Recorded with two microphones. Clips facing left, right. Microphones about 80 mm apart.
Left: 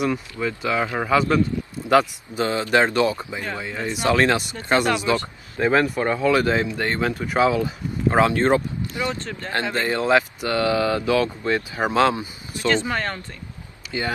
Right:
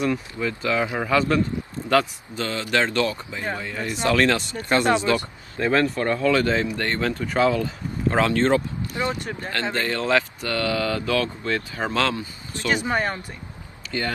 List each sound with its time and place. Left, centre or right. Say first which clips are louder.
0.0 s speech: left 1 dB; centre
8.9 s speech: right 1 dB; right
9.2 s speech: right 1 dB; centre
9.5 s speech: left 3 dB; centre
12.6 s speech: left 1 dB; centre
13.9 s speech: even; centre